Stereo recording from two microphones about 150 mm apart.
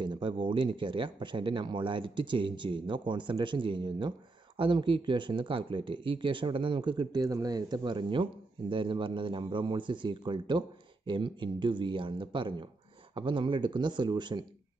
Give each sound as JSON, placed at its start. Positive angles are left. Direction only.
{"t": 0.0, "sound": "speech", "side_deg": -30}